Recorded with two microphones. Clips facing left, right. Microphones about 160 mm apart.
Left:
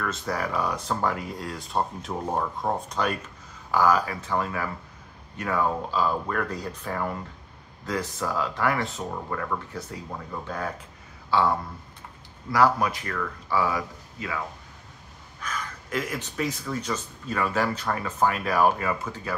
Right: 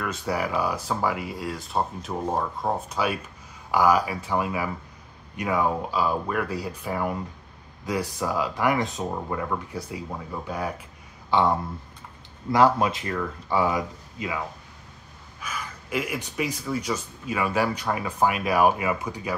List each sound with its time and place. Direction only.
0.0 s speech: 10° right (ahead or behind)
15.4 s speech: 10° right (ahead or behind)